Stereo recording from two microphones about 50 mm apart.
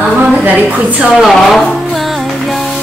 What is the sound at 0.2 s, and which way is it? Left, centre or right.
Speech, right.